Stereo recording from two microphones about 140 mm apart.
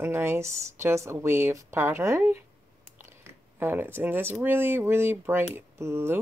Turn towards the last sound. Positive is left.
turn(degrees=-20)  # may be behind; listen again after turning